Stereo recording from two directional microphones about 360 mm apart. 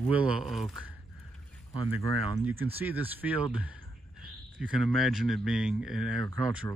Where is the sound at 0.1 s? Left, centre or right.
Centre.